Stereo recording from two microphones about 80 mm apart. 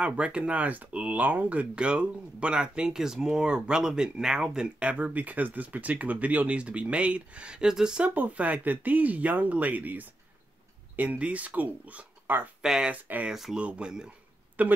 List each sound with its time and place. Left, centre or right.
0.0 s speech: centre
8.1 s speech: centre
12.6 s speech: centre
12.9 s speech: centre
13.3 s speech: centre